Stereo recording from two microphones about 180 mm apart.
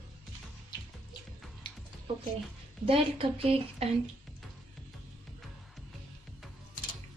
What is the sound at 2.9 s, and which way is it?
A woman's voice, 30° right (ahead or behind).